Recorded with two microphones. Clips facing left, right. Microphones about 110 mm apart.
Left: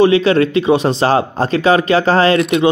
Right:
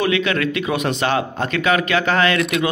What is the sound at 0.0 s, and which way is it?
Speech, 30° left (ahead or behind).